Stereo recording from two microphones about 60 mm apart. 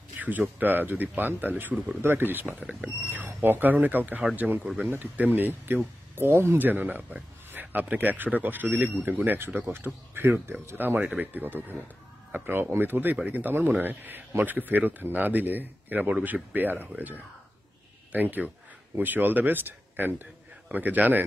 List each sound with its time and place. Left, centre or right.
0.2 s speech: right
2.0 s speech: right
6.6 s speech: right